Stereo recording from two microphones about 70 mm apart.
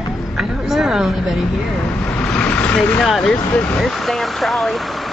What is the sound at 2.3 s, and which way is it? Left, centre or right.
Speech, centre.